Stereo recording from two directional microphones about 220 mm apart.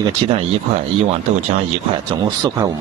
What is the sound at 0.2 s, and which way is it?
Speech, 25° right (ahead or behind).